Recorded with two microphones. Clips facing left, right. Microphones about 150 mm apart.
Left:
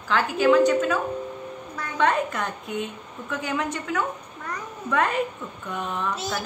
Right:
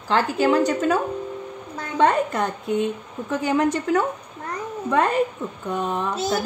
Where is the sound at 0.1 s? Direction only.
35° right (ahead or behind).